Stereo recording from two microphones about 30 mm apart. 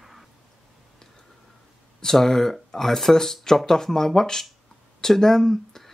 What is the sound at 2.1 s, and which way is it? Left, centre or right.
Speech, centre.